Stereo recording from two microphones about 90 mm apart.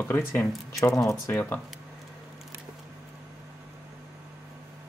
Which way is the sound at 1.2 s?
25° left (ahead or behind).